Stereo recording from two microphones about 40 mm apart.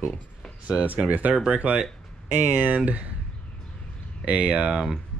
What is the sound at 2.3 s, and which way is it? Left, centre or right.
Speech, right.